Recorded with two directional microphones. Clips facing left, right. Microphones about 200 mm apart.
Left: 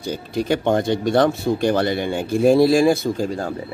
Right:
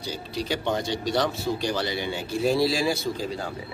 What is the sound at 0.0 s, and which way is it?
Speech, 50° left (ahead or behind).